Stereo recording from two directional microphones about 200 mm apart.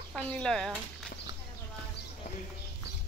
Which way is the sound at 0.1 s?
5° left (ahead or behind).